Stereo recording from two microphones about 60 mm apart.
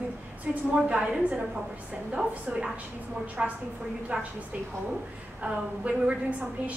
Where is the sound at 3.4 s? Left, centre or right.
Right.